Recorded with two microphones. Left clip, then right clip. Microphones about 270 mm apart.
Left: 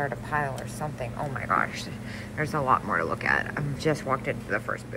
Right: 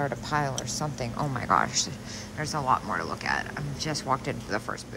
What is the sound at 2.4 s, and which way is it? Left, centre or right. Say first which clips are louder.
Speech: left 2 dB; centre.